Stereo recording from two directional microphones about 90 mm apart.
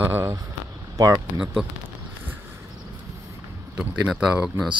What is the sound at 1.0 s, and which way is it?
Speech, 40° right (ahead or behind).